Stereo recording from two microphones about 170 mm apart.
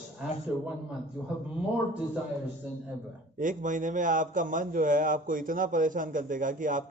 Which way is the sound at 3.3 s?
50° right (ahead or behind).